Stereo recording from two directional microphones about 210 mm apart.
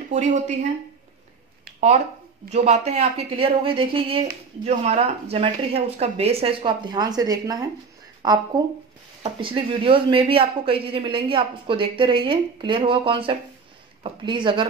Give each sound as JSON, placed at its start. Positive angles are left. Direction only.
{"t": 0.1, "sound": "speech", "side_deg": -35}
{"t": 2.5, "sound": "speech", "side_deg": -30}